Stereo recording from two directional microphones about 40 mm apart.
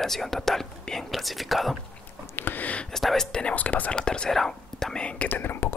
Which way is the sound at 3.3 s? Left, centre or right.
Left.